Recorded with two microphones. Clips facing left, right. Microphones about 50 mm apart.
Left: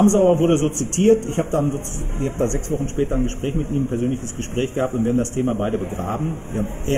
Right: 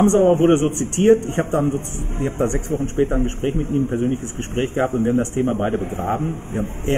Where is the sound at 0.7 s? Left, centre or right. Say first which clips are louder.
Right 1 dB; right.